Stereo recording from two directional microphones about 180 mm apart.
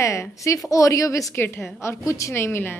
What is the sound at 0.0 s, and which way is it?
A woman's voice, 15° left (ahead or behind).